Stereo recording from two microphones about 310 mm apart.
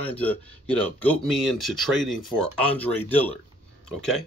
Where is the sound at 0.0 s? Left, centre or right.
Centre.